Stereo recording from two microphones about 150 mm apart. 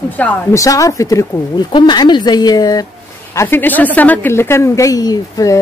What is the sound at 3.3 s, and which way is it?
A woman's voice, 15° left (ahead or behind).